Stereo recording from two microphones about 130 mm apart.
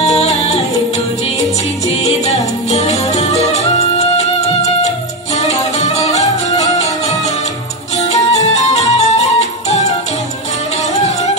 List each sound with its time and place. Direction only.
0.0 s music: 55° left (ahead or behind)
2.0 s music: 55° left (ahead or behind)
11.0 s music: 60° left (ahead or behind)